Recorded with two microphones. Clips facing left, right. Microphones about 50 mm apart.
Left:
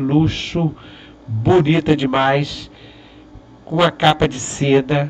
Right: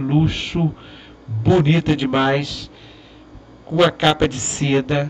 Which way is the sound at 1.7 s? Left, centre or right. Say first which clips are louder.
Left 2 dB; centre.